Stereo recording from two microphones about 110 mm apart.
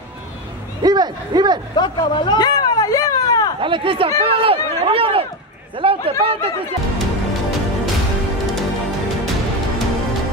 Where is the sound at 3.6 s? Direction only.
50° right (ahead or behind).